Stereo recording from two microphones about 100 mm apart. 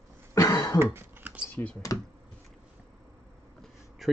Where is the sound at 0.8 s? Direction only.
25° right (ahead or behind).